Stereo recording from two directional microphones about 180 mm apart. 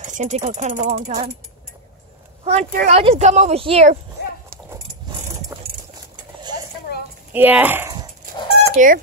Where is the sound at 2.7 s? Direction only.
45° right (ahead or behind).